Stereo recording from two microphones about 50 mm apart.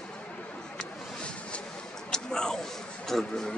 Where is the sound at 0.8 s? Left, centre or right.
Left.